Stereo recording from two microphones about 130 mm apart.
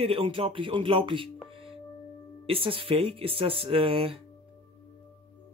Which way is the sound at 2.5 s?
45° right (ahead or behind).